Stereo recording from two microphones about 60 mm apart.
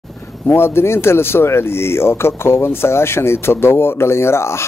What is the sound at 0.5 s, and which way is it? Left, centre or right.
Speech, left.